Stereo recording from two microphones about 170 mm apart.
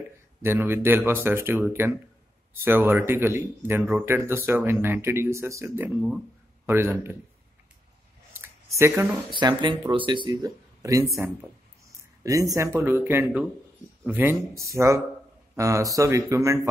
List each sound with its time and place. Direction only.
0.4 s speech: 15° right (ahead or behind)
8.4 s a sound: 15° right (ahead or behind)
9.3 s speech: 25° right (ahead or behind)
12.2 s speech: 20° right (ahead or behind)